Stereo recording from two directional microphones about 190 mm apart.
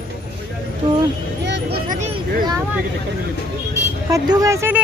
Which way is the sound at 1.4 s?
60° right (ahead or behind).